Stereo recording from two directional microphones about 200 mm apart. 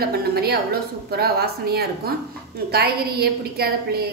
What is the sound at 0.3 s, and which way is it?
A woman's voice, 50° right (ahead or behind).